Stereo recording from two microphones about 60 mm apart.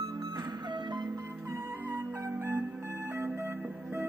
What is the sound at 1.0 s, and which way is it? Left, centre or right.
Music, right.